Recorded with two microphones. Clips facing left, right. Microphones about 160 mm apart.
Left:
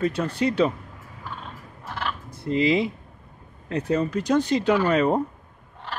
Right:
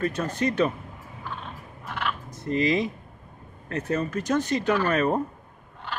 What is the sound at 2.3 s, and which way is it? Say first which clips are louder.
Speech: left 3 dB; 10° left (ahead or behind).